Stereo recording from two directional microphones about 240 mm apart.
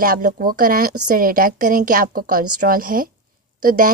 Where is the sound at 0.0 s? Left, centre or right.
Right.